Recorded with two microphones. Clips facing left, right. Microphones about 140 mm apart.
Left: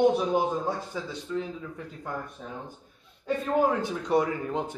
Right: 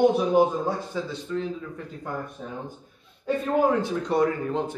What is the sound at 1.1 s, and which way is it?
Speech, 15° left (ahead or behind).